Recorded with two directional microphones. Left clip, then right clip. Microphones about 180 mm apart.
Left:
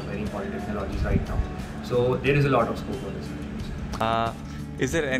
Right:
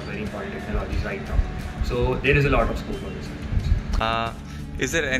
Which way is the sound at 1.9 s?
Centre (ahead or behind).